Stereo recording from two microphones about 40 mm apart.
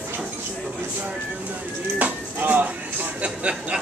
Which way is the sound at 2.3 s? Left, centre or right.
Right.